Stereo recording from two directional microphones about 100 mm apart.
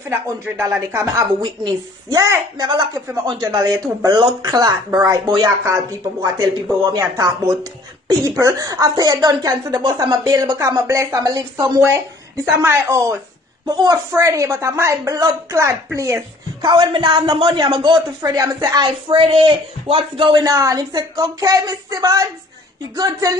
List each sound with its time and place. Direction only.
0.1 s speech: 30° right (ahead or behind)
1.4 s speech: 40° right (ahead or behind)
16.6 s a man's voice: 50° right (ahead or behind)
18.9 s speech: 60° right (ahead or behind)
20.4 s speech: 35° right (ahead or behind)